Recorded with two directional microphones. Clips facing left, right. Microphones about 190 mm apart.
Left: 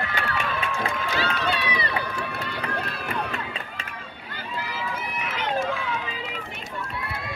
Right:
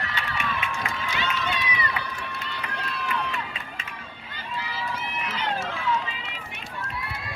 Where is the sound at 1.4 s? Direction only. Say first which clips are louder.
Left 3 dB; 35° left (ahead or behind).